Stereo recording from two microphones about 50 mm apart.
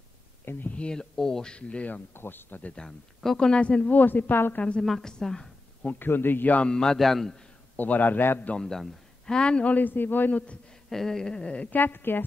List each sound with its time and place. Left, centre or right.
0.7 s speech: left
2.1 s a man's voice: left
2.7 s speech: centre
3.3 s speech: centre
3.9 s a man's voice: left
4.6 s speech: left
4.8 s speech: centre
5.9 s a man's voice: left
6.6 s a man's voice: centre
7.7 s a man's voice: left
8.5 s speech: centre
9.8 s a man's voice: left
10.9 s speech: centre; by 11.8 s left
11.8 s a man's voice: left